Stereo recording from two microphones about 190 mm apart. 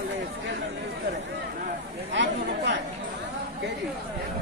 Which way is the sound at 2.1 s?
70° right (ahead or behind).